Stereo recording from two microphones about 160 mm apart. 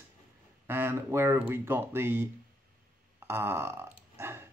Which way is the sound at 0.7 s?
15° right (ahead or behind).